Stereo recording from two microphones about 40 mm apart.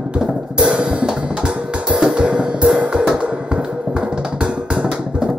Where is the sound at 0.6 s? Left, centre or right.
Right.